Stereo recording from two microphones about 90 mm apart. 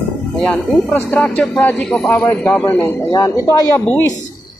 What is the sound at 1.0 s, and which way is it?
Speech, 20° left (ahead or behind).